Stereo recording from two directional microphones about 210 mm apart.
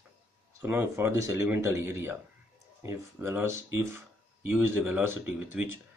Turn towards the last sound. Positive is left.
turn(degrees=-10)  # may be behind; listen again after turning